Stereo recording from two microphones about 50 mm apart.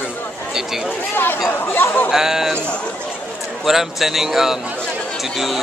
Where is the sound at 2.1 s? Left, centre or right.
Centre.